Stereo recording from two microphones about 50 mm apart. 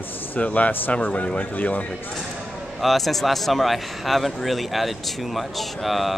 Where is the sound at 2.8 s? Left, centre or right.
Centre.